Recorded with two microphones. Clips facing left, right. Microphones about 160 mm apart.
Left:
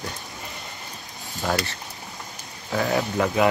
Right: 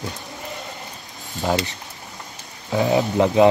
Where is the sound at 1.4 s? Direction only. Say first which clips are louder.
Right 3 dB; 20° right (ahead or behind).